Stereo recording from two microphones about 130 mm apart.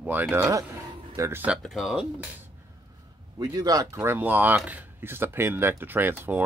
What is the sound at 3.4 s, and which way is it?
Speech, 30° right (ahead or behind).